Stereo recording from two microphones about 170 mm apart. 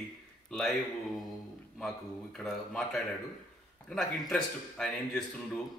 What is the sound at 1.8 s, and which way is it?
Speech, centre (ahead or behind).